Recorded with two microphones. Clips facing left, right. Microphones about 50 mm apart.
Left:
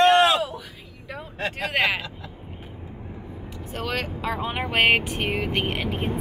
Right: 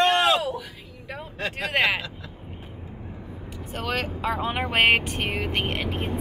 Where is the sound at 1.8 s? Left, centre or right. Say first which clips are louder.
Even; centre.